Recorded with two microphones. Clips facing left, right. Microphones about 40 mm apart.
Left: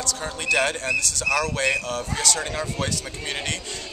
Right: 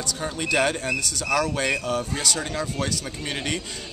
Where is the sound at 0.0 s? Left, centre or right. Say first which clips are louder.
Even; centre.